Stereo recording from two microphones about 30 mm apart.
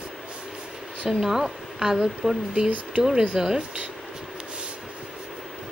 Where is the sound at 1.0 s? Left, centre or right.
Centre.